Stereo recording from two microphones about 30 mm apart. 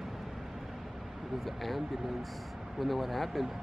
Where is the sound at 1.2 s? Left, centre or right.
Centre.